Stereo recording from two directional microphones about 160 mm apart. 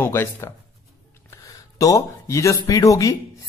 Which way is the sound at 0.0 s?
15° left (ahead or behind).